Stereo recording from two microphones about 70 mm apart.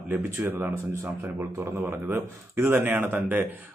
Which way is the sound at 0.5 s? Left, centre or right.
Right.